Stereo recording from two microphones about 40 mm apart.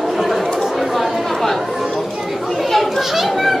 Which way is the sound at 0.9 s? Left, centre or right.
Centre.